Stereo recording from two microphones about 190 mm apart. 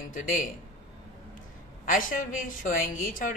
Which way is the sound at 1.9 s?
45° left (ahead or behind).